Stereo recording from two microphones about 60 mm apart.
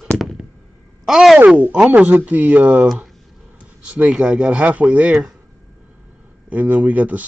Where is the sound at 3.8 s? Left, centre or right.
Right.